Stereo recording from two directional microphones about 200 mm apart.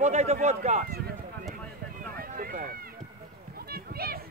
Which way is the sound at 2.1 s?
45° right (ahead or behind).